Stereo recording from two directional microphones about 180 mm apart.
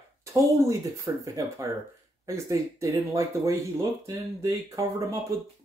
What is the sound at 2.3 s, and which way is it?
Speech, 15° right (ahead or behind).